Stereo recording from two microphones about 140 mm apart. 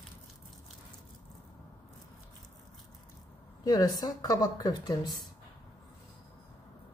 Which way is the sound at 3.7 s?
25° left (ahead or behind).